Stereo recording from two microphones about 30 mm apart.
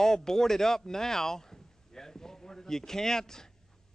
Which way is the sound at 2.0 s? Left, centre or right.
Centre.